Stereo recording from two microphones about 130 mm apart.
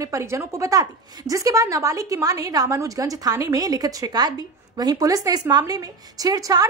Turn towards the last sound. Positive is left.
turn(degrees=-30)  # may be behind; listen again after turning